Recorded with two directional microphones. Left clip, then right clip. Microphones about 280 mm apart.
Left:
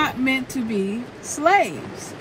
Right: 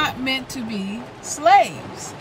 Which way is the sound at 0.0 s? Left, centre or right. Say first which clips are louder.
Left 1 dB; right.